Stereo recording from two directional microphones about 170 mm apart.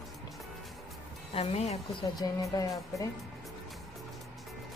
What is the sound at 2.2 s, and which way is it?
Speech, 20° left (ahead or behind).